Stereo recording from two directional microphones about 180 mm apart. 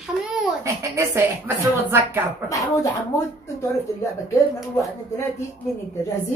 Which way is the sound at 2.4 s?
20° left (ahead or behind).